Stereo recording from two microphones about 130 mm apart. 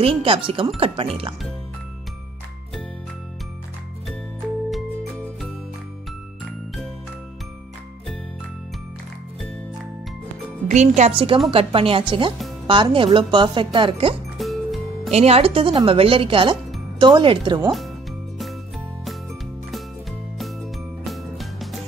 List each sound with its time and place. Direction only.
0.0 s speech: 45° right (ahead or behind)
10.7 s a woman's voice: 65° right (ahead or behind)
11.1 s speech: 45° right (ahead or behind)
14.4 s music: centre (ahead or behind)
15.0 s speech: 50° right (ahead or behind)
19.7 s music: centre (ahead or behind)